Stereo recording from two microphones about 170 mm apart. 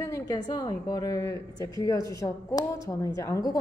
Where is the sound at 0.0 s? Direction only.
20° left (ahead or behind).